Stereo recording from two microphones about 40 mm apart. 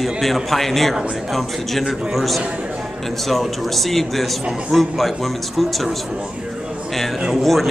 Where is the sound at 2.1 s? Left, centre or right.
Centre.